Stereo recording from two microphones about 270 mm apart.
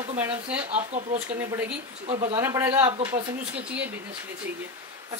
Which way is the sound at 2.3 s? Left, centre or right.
Centre.